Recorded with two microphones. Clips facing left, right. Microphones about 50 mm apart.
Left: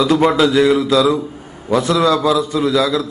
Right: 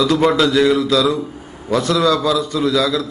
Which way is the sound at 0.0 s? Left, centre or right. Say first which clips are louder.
Left 1 dB; centre.